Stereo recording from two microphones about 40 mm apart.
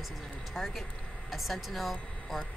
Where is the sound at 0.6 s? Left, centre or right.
Centre.